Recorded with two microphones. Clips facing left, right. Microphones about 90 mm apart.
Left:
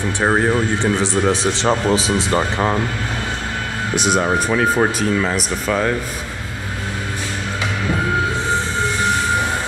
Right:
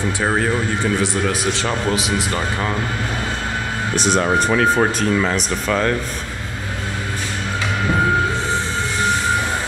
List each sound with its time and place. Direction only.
0.2 s speech: 25° left (ahead or behind)
3.9 s speech: 10° left (ahead or behind)